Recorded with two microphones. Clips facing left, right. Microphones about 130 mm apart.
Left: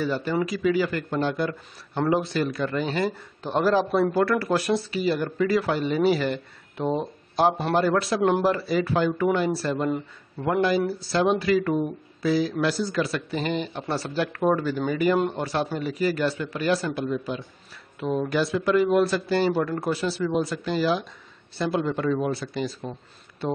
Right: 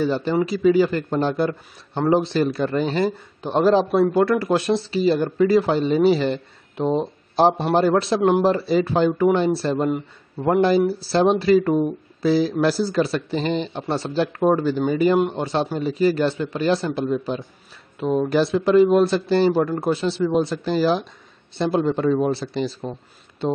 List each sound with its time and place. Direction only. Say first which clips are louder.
0.0 s a man's voice: right 5 dB; 25° right (ahead or behind)